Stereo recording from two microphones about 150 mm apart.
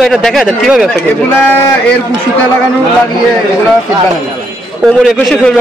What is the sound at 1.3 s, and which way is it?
Speech, 15° left (ahead or behind).